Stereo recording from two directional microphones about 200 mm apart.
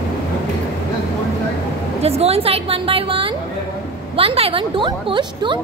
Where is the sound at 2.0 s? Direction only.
30° right (ahead or behind).